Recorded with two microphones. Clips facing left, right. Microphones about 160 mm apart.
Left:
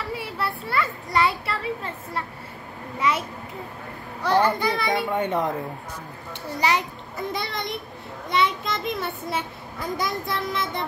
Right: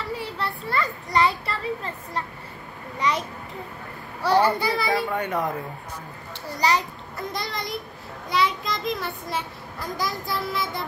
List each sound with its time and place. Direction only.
0.2 s a child's voice: 5° left (ahead or behind)
4.2 s a child's voice: 10° right (ahead or behind)
5.1 s speech: 20° left (ahead or behind)
7.2 s a child's voice: centre (ahead or behind)